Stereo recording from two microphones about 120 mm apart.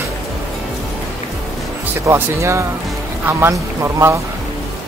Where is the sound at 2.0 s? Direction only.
25° right (ahead or behind).